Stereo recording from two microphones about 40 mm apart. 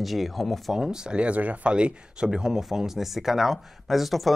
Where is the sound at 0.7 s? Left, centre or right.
Centre.